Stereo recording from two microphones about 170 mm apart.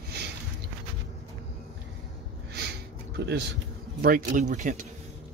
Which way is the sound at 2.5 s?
75° right (ahead or behind).